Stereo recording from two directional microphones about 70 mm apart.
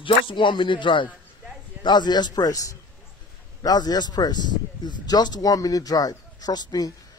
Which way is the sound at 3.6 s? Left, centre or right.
Left.